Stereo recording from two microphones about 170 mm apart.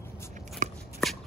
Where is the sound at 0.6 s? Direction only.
45° right (ahead or behind).